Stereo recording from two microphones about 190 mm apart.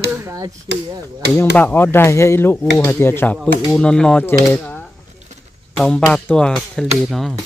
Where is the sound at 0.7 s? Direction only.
65° right (ahead or behind).